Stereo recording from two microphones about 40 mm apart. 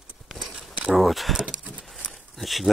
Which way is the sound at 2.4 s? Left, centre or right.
Centre.